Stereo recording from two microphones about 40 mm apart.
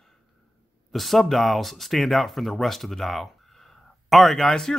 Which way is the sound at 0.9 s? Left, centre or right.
Centre.